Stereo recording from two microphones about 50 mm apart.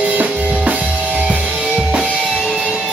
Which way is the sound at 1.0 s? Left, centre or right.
Right.